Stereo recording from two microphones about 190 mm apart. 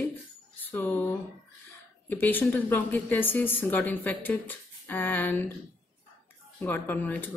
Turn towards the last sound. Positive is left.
turn(degrees=10)  # may be behind; listen again after turning